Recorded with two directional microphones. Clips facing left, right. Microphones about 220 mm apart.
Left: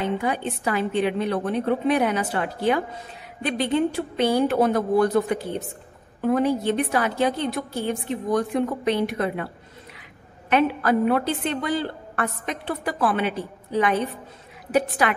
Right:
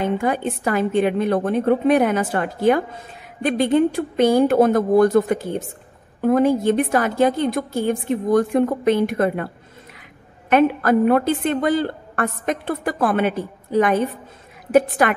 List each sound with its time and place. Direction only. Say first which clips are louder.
0.0 s a woman's voice: right 4 dB; 50° right (ahead or behind)
10.5 s a woman's voice: right 4 dB; 50° right (ahead or behind)